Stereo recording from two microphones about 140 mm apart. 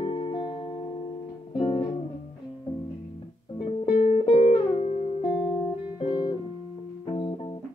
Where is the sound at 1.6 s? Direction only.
40° left (ahead or behind).